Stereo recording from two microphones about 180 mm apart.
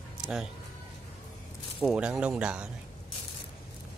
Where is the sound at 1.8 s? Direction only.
5° right (ahead or behind).